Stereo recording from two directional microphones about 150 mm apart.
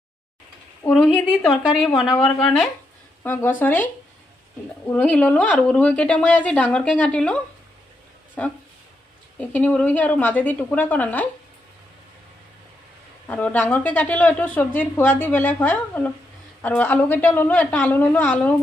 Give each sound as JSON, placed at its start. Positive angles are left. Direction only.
{"t": 0.8, "sound": "speech", "side_deg": 5}
{"t": 3.3, "sound": "a woman's voice", "side_deg": 15}
{"t": 4.8, "sound": "a woman's voice", "side_deg": 10}
{"t": 8.4, "sound": "a woman's voice", "side_deg": 10}
{"t": 13.3, "sound": "a woman's voice", "side_deg": 10}